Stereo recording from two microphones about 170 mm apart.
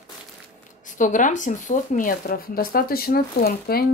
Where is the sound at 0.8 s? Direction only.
50° left (ahead or behind).